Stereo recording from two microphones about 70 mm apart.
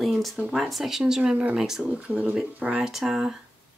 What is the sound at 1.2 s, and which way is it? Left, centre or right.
Speech, centre.